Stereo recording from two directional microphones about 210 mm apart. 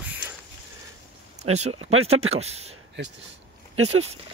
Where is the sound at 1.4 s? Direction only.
30° right (ahead or behind).